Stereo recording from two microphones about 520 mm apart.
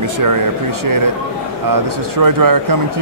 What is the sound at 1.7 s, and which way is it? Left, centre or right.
Speech, right.